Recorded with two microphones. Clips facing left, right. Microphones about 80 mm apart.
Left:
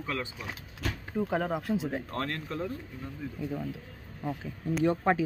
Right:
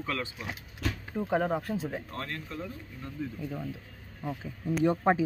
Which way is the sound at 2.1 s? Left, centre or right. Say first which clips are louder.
Left 4 dB; left.